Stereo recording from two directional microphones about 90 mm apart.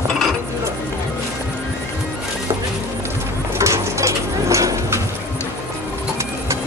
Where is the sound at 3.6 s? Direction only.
35° right (ahead or behind).